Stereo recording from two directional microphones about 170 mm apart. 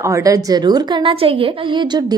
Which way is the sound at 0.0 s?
20° right (ahead or behind).